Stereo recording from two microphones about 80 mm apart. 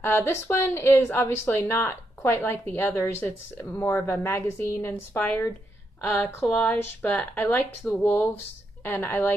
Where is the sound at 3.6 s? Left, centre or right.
Left.